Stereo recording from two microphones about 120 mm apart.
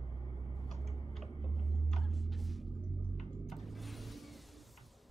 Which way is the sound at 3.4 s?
Centre (ahead or behind).